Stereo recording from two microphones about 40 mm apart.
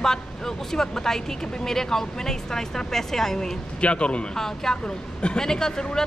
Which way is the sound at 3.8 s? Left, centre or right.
Left.